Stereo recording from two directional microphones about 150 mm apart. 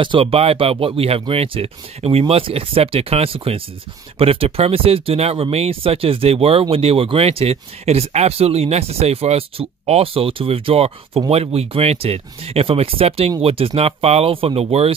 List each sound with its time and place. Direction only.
0.0 s speech: 35° right (ahead or behind)